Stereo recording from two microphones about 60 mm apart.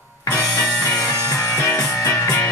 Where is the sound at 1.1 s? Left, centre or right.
Left.